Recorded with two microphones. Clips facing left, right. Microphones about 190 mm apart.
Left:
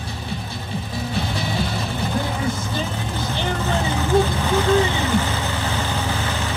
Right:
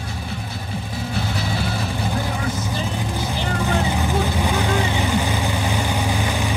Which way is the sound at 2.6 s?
15° right (ahead or behind).